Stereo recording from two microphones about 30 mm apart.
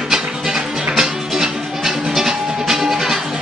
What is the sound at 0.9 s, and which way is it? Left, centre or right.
Music, centre.